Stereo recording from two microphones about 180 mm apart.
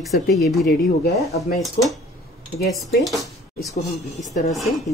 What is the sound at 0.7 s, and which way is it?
Speech, 60° left (ahead or behind).